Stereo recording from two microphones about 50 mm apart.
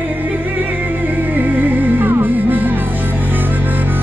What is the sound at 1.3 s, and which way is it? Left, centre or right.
Music, right.